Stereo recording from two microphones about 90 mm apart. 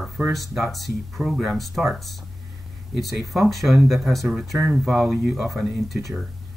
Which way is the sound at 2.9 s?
Centre (ahead or behind).